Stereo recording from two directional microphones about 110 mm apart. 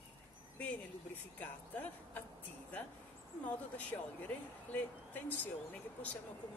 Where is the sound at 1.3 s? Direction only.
15° left (ahead or behind).